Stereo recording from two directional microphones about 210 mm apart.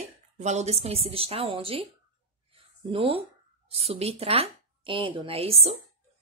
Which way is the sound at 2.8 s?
25° right (ahead or behind).